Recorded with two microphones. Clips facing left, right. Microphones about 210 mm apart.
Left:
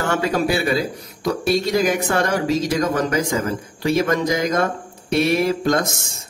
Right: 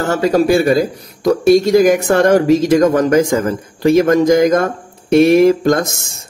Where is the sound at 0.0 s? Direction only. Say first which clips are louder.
Right 7 dB; 40° right (ahead or behind).